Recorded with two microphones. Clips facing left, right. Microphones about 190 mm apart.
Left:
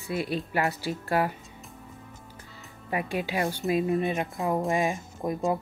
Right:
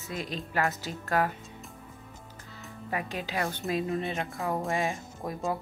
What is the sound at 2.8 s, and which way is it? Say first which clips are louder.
Speech: left 5 dB; 10° left (ahead or behind).